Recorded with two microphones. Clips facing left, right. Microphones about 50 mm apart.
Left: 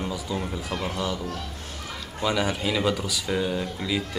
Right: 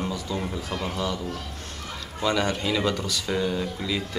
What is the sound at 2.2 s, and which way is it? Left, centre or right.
Speech, centre.